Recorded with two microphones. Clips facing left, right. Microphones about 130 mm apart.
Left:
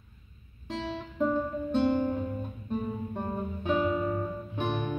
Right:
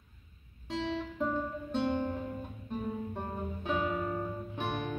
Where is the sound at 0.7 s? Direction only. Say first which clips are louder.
Right 1 dB; 5° left (ahead or behind).